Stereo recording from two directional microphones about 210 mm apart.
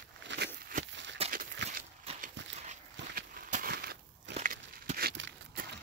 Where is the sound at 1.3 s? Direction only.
45° right (ahead or behind).